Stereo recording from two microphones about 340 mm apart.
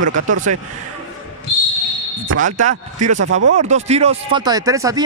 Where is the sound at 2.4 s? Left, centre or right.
Right.